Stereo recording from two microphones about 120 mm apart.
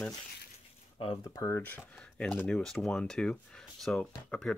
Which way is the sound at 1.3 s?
30° left (ahead or behind).